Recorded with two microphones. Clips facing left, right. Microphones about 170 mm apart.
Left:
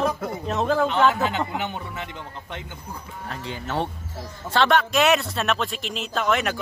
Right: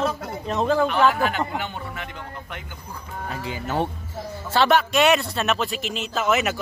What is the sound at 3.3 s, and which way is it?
Speech, 5° right (ahead or behind).